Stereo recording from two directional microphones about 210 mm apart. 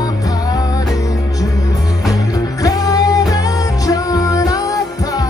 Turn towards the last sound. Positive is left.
turn(degrees=15)  # may be behind; listen again after turning